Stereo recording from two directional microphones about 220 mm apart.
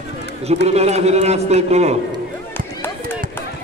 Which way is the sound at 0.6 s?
30° right (ahead or behind).